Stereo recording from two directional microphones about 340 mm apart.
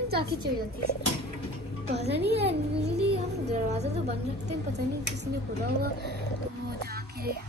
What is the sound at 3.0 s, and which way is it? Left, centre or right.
Music, centre.